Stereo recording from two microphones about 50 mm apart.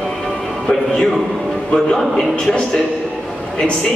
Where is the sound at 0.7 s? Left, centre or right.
Centre.